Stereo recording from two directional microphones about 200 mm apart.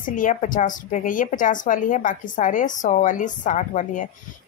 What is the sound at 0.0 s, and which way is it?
Speech, 40° left (ahead or behind).